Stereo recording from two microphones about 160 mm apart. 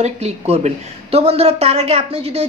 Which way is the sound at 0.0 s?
45° right (ahead or behind).